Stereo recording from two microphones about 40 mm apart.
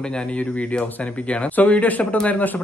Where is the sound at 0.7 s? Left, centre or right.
Left.